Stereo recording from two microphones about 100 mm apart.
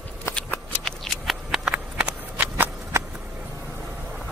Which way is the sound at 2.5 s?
25° right (ahead or behind).